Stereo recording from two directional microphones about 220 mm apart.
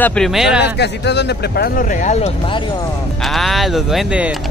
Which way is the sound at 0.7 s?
50° left (ahead or behind).